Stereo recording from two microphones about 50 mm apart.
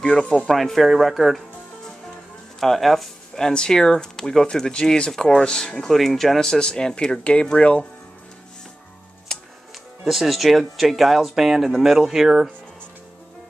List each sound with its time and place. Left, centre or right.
0.0 s speech: centre
0.5 s speech: centre
2.6 s speech: centre; by 7.8 s left
9.3 s music: centre
10.0 s speech: centre